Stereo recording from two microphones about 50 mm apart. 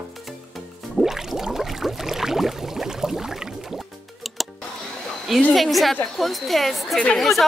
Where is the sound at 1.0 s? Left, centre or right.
Centre.